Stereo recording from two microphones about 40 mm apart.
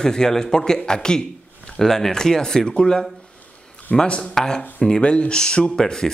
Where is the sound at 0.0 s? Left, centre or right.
Centre.